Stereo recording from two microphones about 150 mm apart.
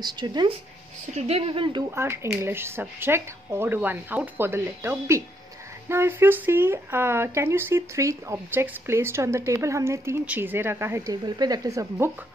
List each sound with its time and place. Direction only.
0.0 s speech: 30° right (ahead or behind)
1.1 s speech: 40° right (ahead or behind)
1.9 s speech: 15° right (ahead or behind)
11.2 s speech: 25° right (ahead or behind)